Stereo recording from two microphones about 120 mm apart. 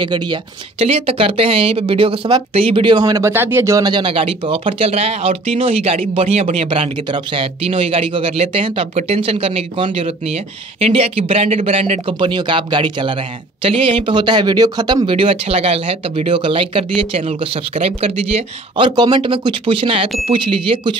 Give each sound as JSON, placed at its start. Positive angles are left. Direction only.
{"t": 0.0, "sound": "speech", "side_deg": -40}
{"t": 0.7, "sound": "a man's voice", "side_deg": -55}
{"t": 3.3, "sound": "speech", "side_deg": -20}
{"t": 3.8, "sound": "a man's voice", "side_deg": -40}
{"t": 12.1, "sound": "a man's voice", "side_deg": -40}